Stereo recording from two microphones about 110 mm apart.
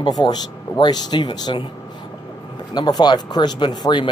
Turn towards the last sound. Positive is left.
turn(degrees=45)  # may be behind; listen again after turning